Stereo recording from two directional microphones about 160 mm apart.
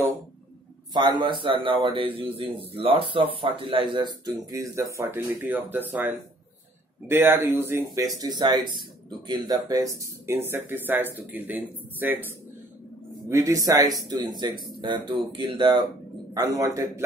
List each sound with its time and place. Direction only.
0.9 s a man's voice: 30° right (ahead or behind); by 12.3 s 10° right (ahead or behind)
13.3 s speech: 20° right (ahead or behind)
16.3 s speech: 20° right (ahead or behind)